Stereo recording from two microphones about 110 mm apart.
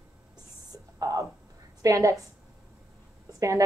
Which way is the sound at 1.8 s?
30° right (ahead or behind).